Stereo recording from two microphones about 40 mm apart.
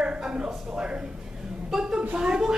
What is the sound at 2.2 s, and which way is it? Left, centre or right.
Speech, centre.